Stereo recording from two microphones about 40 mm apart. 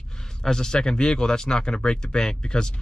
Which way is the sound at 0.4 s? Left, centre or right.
Centre.